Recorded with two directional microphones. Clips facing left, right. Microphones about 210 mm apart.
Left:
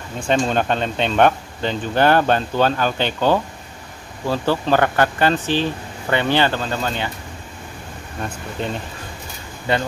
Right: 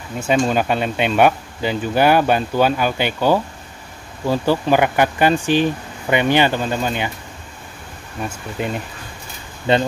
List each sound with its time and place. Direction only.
0.2 s speech: 5° right (ahead or behind)
8.6 s speech: 10° right (ahead or behind)
9.7 s speech: 20° right (ahead or behind)